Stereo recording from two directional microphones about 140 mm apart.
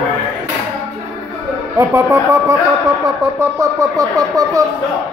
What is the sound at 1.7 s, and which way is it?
Speech, 20° right (ahead or behind).